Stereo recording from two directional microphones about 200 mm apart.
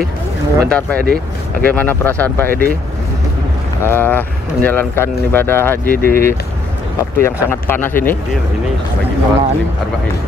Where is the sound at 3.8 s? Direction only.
10° left (ahead or behind).